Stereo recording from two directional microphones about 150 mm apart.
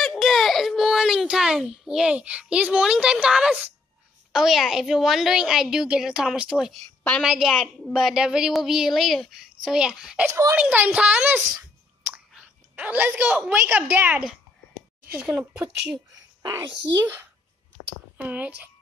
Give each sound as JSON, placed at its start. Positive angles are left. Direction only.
{"t": 0.0, "sound": "a child's voice", "side_deg": 0}